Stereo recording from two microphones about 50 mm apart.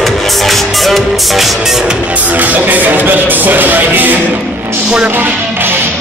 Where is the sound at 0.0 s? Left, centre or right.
Centre.